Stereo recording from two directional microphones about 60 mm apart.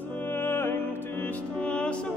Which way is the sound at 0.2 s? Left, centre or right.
Left.